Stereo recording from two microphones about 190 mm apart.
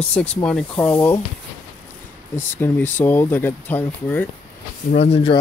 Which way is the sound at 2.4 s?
10° left (ahead or behind).